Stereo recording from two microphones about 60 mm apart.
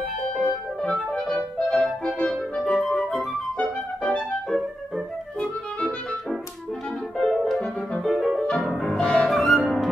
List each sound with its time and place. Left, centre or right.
1.1 s music: centre
3.5 s music: centre
5.4 s music: centre
7.2 s music: centre
8.9 s music: centre
9.3 s music: centre